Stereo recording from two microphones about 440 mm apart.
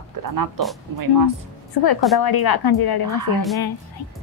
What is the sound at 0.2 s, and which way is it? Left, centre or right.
Speech, right.